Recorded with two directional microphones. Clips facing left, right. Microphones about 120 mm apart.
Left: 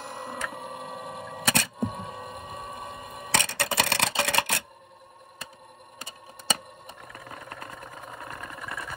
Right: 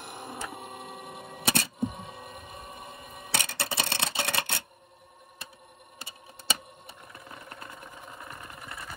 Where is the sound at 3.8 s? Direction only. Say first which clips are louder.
Left 6 dB; 60° left (ahead or behind).